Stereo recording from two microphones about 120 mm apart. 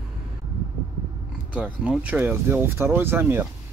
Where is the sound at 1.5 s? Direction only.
10° right (ahead or behind).